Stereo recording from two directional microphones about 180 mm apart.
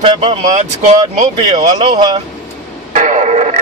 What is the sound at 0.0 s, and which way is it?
Speech, 25° right (ahead or behind).